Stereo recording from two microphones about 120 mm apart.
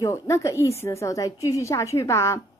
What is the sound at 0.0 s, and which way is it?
A woman's voice, 25° left (ahead or behind).